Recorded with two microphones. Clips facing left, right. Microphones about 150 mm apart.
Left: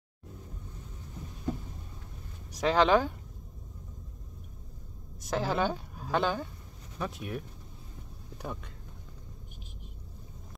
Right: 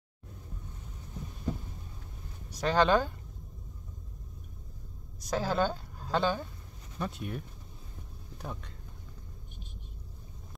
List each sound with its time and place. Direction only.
2.6 s speech: 5° left (ahead or behind)
5.3 s a woman's voice: 5° left (ahead or behind)